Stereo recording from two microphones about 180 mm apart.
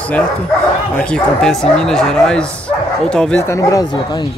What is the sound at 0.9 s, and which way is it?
Speech, 5° left (ahead or behind).